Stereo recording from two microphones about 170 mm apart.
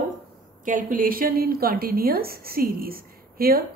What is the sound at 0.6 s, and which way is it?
A woman's voice, 50° right (ahead or behind).